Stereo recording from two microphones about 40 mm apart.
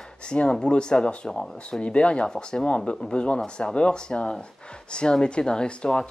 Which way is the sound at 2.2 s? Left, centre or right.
Centre.